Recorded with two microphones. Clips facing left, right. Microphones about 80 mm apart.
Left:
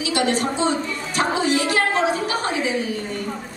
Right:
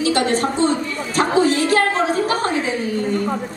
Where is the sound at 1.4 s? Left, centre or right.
Centre.